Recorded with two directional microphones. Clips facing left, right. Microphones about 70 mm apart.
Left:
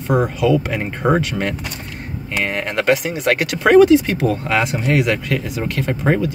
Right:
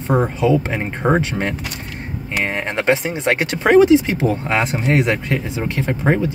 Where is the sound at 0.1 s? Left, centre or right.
Right.